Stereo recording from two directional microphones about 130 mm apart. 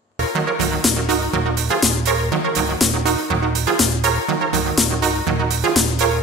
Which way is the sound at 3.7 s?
Centre (ahead or behind).